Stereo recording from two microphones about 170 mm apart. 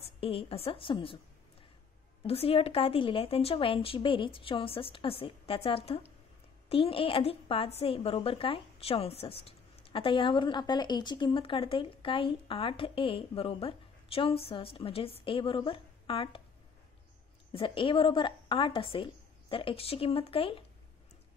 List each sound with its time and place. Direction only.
0.0 s a woman's voice: 35° left (ahead or behind)
2.2 s a woman's voice: 35° left (ahead or behind)
17.5 s a woman's voice: 30° left (ahead or behind)